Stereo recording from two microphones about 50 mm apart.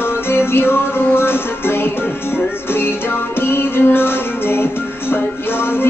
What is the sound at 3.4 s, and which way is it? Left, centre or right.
Music, left.